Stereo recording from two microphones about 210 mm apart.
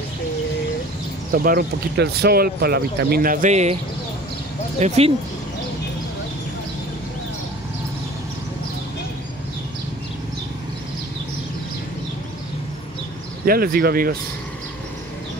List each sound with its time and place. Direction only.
1.3 s speech: 45° right (ahead or behind)
4.7 s speech: 30° right (ahead or behind)
13.5 s speech: 45° right (ahead or behind)